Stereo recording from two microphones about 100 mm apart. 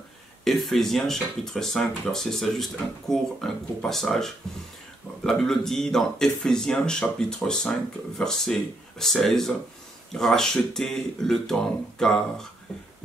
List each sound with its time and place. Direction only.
0.4 s speech: centre (ahead or behind)